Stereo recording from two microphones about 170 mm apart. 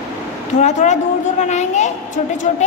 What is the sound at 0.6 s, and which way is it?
A woman's voice, 45° left (ahead or behind).